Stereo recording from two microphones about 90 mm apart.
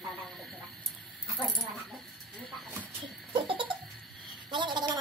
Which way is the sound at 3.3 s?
70° right (ahead or behind).